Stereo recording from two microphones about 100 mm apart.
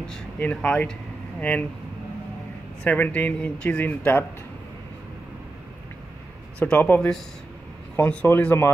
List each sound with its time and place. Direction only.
0.4 s speech: 15° left (ahead or behind)
2.8 s speech: 15° left (ahead or behind)
6.7 s speech: 15° left (ahead or behind)